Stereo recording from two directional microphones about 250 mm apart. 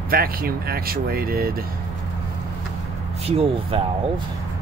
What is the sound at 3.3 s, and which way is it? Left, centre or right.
Speech, right.